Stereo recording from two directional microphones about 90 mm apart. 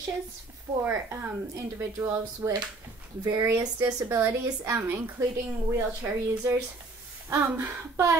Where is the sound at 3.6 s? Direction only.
45° right (ahead or behind).